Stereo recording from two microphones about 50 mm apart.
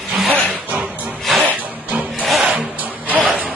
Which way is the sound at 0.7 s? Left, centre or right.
Right.